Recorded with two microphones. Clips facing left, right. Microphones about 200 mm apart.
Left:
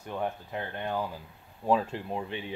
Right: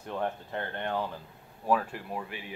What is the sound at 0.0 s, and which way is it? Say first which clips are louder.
Speech: even; 5° left (ahead or behind).